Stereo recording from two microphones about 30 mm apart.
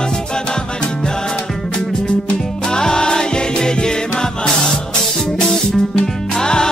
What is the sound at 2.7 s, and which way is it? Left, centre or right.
Music, left.